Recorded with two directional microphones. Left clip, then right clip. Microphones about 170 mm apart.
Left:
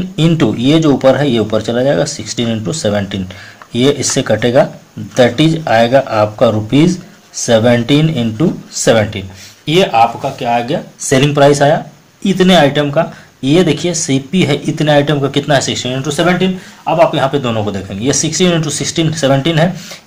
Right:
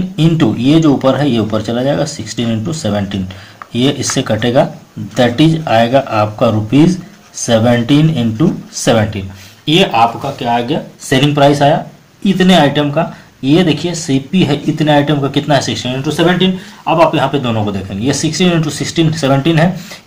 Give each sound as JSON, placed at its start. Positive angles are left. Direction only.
{"t": 0.1, "sound": "speech", "side_deg": 30}